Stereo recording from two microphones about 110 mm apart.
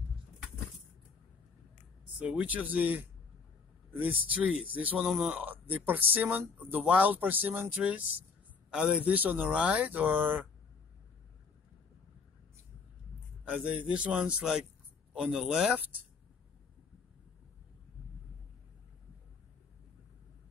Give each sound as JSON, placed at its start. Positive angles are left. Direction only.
{"t": 2.1, "sound": "speech", "side_deg": -15}
{"t": 13.5, "sound": "speech", "side_deg": -10}